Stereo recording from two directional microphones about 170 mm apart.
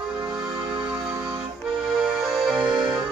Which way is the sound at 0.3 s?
5° right (ahead or behind).